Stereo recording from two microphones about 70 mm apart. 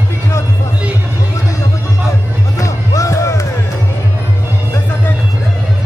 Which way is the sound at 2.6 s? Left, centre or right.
Left.